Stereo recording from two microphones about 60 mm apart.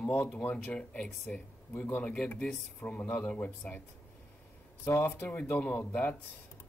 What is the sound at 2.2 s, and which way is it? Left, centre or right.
Speech, left.